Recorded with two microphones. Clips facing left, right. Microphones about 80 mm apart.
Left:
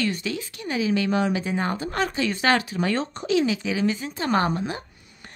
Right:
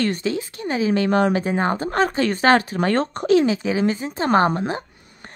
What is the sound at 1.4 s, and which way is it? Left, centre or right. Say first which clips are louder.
Speech: right 5 dB; right.